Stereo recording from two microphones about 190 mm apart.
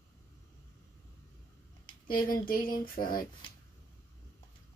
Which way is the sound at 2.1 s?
50° left (ahead or behind).